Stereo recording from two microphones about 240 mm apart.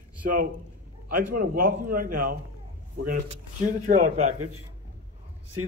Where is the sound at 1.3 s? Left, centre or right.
Right.